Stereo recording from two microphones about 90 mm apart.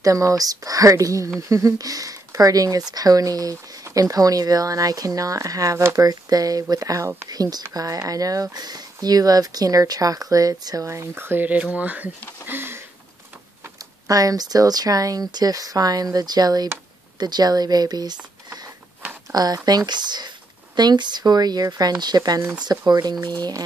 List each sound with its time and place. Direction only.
0.0 s speech: 40° right (ahead or behind)
10.9 s speech: 30° right (ahead or behind)
12.4 s a sound: 25° right (ahead or behind)
14.0 s speech: 40° right (ahead or behind)
19.3 s speech: 45° right (ahead or behind)